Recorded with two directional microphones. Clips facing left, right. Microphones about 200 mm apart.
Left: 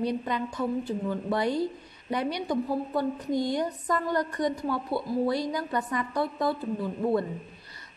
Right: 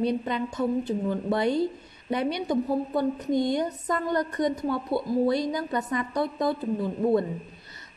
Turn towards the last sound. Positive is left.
turn(degrees=-20)  # may be behind; listen again after turning